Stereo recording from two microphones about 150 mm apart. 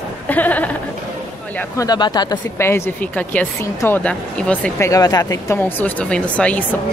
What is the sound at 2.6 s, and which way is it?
A woman's voice, 15° left (ahead or behind).